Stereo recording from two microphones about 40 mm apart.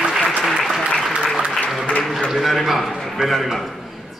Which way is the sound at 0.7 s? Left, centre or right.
Centre.